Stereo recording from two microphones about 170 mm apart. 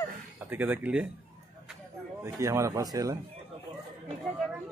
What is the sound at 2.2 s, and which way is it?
Speech, 15° right (ahead or behind).